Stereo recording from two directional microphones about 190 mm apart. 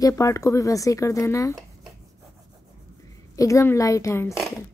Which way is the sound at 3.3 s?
15° left (ahead or behind).